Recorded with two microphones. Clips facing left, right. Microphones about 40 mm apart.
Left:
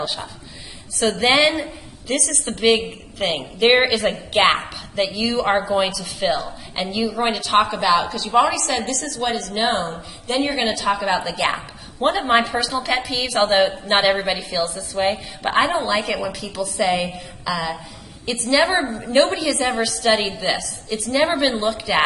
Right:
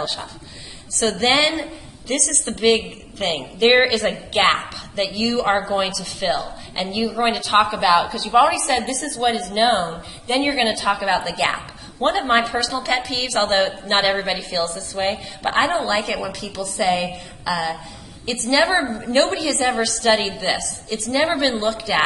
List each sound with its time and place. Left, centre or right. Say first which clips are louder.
0.0 s a woman's voice: even; centre
20.2 s a woman's voice: even; left
20.4 s a woman's voice: even; centre